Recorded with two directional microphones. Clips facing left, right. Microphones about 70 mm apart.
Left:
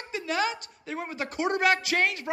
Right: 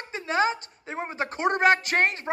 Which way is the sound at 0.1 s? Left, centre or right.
Right.